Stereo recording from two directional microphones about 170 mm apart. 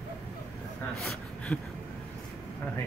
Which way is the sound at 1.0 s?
5° left (ahead or behind).